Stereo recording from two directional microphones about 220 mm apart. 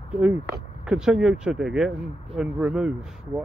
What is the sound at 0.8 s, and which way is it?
Speech, 5° right (ahead or behind).